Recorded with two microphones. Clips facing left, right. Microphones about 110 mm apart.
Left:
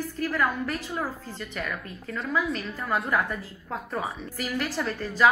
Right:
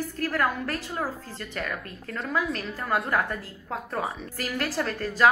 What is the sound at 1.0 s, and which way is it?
Speech, 40° right (ahead or behind).